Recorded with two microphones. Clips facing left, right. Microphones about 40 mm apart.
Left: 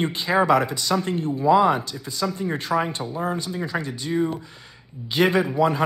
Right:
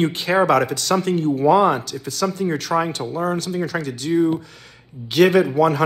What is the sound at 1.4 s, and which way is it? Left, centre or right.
Speech, centre.